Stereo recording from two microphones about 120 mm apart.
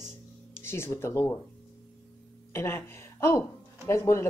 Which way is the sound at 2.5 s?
20° left (ahead or behind).